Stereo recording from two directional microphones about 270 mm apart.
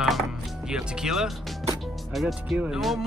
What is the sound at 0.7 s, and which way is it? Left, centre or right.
Speech, centre.